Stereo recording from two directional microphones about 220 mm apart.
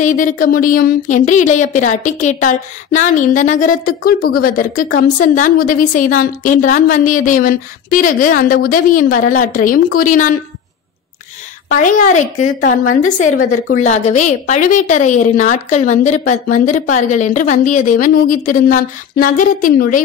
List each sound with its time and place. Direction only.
0.0 s a woman's voice: 35° left (ahead or behind)
11.7 s a woman's voice: 35° left (ahead or behind)